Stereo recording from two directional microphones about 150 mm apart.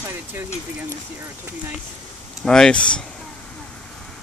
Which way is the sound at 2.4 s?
5° left (ahead or behind).